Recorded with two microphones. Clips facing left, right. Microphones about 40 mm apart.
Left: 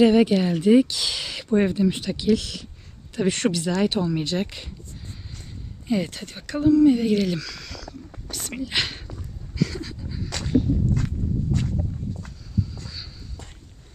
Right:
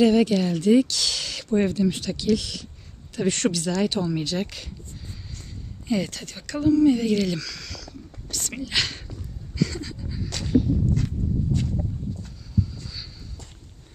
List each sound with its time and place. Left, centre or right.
0.0 s speech: centre
5.9 s speech: left
9.6 s pant: centre
12.5 s a sound: centre